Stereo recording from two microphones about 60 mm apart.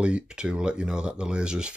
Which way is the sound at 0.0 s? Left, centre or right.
Centre.